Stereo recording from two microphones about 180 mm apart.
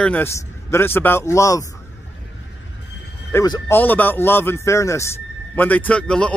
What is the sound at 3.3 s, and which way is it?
A man's voice, 20° left (ahead or behind).